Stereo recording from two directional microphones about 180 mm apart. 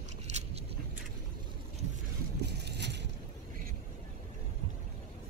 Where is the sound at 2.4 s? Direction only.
70° right (ahead or behind).